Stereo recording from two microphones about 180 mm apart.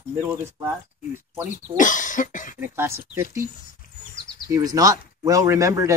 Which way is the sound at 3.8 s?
50° left (ahead or behind).